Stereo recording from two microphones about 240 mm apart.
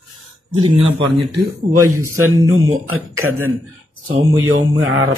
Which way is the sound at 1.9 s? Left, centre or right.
Centre.